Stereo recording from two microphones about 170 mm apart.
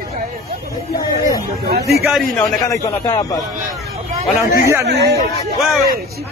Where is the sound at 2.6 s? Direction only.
20° left (ahead or behind).